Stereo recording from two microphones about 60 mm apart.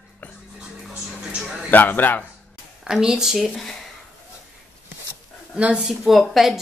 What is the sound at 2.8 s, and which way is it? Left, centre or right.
Speech, centre.